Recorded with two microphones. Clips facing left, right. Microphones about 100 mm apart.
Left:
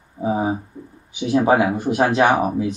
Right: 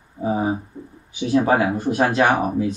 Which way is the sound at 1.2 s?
20° left (ahead or behind).